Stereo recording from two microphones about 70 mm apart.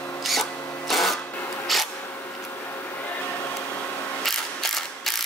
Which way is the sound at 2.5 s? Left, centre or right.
Left.